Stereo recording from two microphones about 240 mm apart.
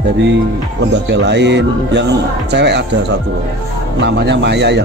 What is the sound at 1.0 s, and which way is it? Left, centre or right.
A man's voice, right.